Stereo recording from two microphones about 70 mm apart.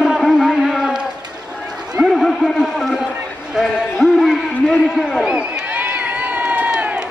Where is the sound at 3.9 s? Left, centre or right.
Centre.